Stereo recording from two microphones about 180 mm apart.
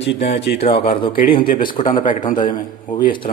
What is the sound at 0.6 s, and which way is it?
A man's voice, 30° left (ahead or behind).